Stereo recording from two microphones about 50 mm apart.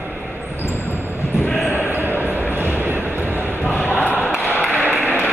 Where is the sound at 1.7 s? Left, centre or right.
Right.